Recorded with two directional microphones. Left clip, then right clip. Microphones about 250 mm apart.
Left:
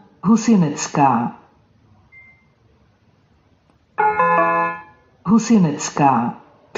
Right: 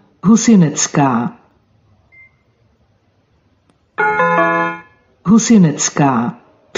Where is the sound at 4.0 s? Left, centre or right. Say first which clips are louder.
Right 2 dB; right.